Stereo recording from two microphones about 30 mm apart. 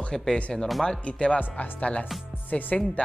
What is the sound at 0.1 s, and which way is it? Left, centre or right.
Speech, left.